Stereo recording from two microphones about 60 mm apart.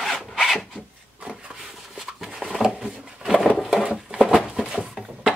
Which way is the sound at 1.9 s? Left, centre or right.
Centre.